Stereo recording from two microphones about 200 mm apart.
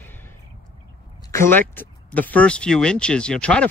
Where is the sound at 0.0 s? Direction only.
10° left (ahead or behind).